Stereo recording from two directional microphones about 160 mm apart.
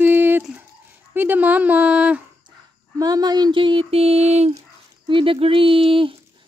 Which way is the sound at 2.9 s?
25° right (ahead or behind).